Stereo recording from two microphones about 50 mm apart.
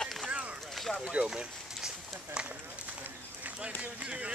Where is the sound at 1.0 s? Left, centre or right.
Centre.